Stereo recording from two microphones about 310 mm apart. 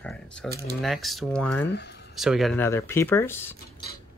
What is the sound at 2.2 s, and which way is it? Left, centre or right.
Speech, centre.